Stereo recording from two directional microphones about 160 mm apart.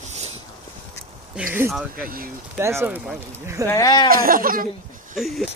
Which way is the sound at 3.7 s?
25° left (ahead or behind).